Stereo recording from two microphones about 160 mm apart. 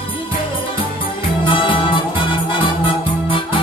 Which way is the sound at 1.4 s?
30° left (ahead or behind).